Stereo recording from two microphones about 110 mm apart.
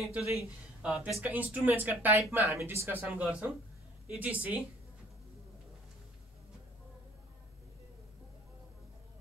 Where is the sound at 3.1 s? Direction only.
10° right (ahead or behind).